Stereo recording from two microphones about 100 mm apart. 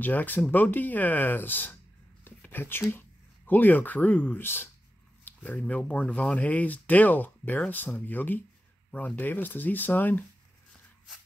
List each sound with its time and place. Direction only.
0.0 s speech: 15° left (ahead or behind)